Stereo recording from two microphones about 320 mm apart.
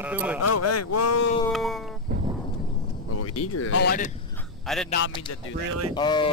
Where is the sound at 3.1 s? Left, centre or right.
Left.